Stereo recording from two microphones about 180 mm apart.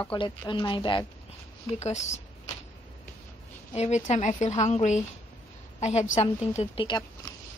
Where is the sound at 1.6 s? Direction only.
40° left (ahead or behind).